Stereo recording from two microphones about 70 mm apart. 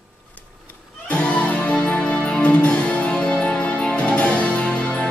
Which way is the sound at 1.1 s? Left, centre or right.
Centre.